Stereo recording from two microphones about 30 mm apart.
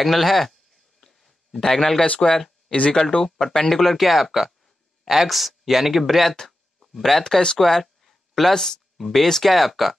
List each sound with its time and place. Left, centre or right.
0.0 s speech: centre
1.0 s a sound: centre
2.9 s speech: left; by 7.2 s centre
7.2 s speech: centre
7.5 s a sound: centre
8.5 s speech: centre
8.9 s speech: centre